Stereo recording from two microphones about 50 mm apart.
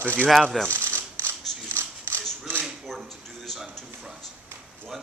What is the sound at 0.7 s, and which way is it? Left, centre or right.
Mechanisms, right.